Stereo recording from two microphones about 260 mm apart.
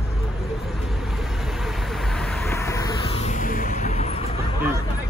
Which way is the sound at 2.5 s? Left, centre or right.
Centre.